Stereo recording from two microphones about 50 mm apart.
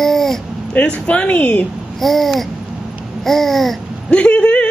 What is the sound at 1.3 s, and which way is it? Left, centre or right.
Speech, left.